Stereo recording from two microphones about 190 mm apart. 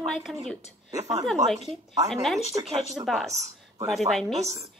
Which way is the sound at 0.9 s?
15° right (ahead or behind).